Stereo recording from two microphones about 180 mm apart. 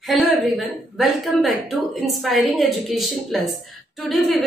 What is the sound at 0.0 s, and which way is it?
A woman's voice, centre (ahead or behind).